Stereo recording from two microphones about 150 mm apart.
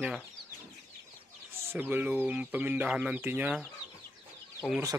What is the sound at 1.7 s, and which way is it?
Speech, 10° right (ahead or behind).